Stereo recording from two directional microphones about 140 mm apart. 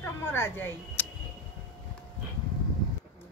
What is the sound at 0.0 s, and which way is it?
Speech, 15° left (ahead or behind).